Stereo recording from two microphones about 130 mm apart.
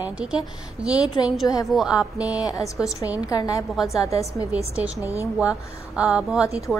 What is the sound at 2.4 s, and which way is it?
A woman's voice, 25° left (ahead or behind).